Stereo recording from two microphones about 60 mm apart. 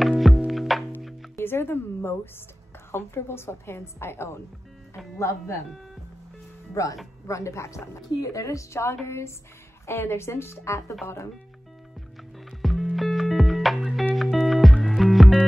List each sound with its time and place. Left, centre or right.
0.0 s music: centre
1.4 s a woman's voice: left
6.7 s a woman's voice: left
8.2 s a woman's voice: left
12.4 s music: centre